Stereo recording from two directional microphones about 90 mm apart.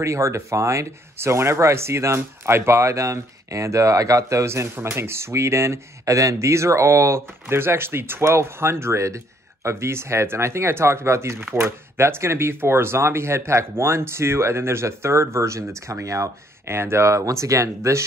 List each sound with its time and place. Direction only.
0.0 s speech: 30° right (ahead or behind)